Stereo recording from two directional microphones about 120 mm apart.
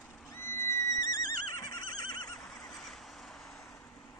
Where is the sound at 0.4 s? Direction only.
20° left (ahead or behind).